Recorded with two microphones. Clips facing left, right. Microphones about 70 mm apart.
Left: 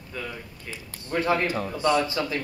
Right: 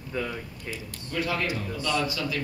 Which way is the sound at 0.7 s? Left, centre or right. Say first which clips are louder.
Left 4 dB; left.